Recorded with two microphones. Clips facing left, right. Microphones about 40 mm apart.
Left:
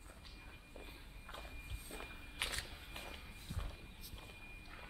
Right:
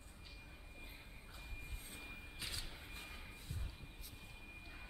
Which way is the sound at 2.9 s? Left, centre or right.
Left.